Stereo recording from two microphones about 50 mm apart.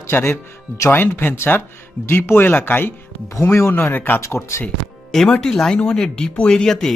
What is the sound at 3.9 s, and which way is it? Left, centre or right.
Speech, left.